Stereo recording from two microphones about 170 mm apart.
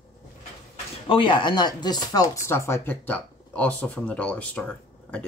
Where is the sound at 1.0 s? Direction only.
30° left (ahead or behind).